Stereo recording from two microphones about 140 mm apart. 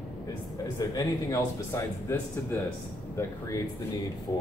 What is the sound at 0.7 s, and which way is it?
Speech, 25° left (ahead or behind).